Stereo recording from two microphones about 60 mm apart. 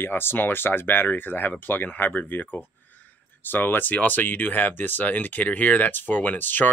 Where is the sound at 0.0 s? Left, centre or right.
Left.